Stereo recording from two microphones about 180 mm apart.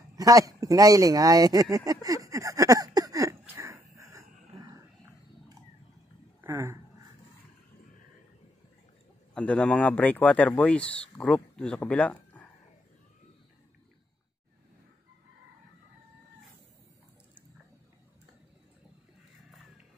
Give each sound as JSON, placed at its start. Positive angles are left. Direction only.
{"t": 0.1, "sound": "speech", "side_deg": -20}
{"t": 1.9, "sound": "a sound", "side_deg": -20}
{"t": 6.4, "sound": "speech", "side_deg": -15}
{"t": 9.3, "sound": "speech", "side_deg": 5}